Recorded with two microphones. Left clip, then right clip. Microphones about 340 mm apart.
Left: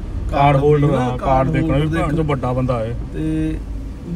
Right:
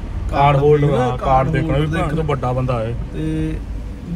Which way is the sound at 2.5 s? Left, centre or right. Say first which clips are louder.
Left 1 dB; right.